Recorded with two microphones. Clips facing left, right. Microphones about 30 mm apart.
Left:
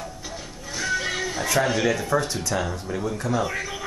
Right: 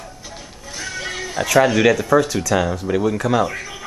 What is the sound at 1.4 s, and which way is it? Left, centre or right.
Speech, right.